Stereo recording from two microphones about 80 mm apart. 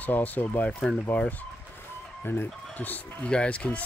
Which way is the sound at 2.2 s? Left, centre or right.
Left.